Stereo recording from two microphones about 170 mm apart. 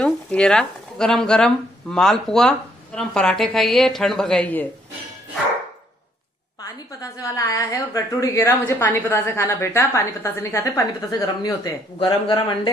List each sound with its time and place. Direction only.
0.0 s speech: 5° left (ahead or behind)
7.0 s a woman's voice: 20° left (ahead or behind)